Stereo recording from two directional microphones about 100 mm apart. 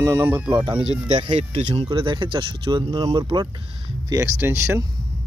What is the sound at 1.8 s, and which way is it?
Speech, 55° right (ahead or behind).